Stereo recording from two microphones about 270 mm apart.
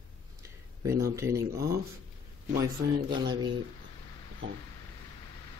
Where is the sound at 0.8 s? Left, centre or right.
Centre.